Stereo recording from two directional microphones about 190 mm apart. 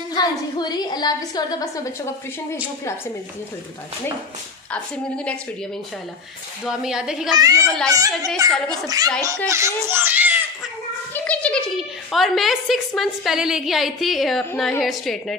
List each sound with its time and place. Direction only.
0.1 s a woman's voice: 20° left (ahead or behind)
5.1 s a woman's voice: 5° left (ahead or behind)
6.6 s a woman's voice: 5° right (ahead or behind)
7.3 s a child's voice: 15° right (ahead or behind)
11.1 s a woman's voice: 5° left (ahead or behind)